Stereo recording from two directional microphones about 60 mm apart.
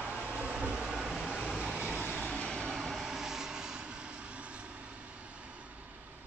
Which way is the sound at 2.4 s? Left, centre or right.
Centre.